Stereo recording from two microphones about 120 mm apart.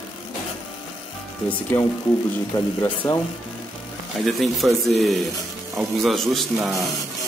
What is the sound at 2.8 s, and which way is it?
Speech, 15° left (ahead or behind).